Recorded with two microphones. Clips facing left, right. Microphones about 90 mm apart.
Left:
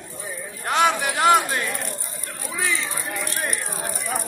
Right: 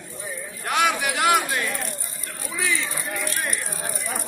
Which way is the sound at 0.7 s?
30° left (ahead or behind).